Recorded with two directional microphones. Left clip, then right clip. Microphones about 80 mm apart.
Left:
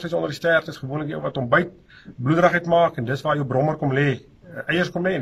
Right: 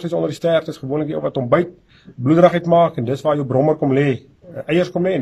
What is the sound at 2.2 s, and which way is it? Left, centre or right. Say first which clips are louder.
A man's voice: right 5 dB; right.